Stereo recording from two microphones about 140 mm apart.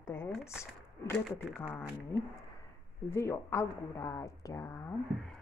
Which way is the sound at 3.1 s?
20° left (ahead or behind).